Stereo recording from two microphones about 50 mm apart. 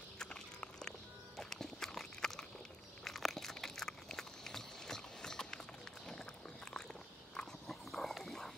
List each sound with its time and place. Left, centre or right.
0.2 s walk: centre
3.0 s a sound: centre
6.0 s run: centre
7.3 s dog: centre